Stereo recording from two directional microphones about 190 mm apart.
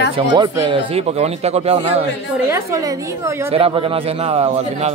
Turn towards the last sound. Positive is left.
turn(degrees=-35)  # may be behind; listen again after turning